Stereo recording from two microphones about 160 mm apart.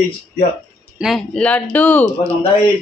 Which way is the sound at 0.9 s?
Centre (ahead or behind).